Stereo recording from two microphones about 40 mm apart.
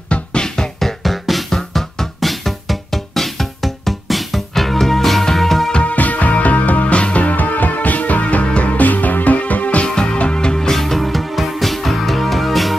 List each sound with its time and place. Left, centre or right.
0.1 s music: left
0.6 s music: centre
5.7 s music: left
5.9 s music: left
8.7 s music: left
9.8 s music: centre
10.1 s music: left
10.8 s music: centre